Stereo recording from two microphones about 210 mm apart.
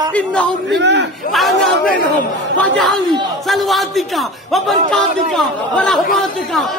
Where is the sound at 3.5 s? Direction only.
Centre (ahead or behind).